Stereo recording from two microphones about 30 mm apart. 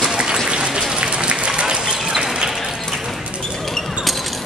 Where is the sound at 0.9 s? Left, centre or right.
Right.